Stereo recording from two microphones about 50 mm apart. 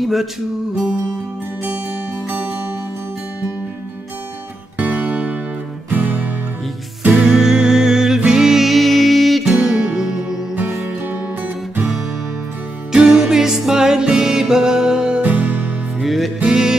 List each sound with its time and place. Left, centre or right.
0.0 s music: centre
4.7 s music: right
7.2 s music: centre
12.9 s music: centre
15.2 s music: right
16.0 s music: centre
16.4 s music: centre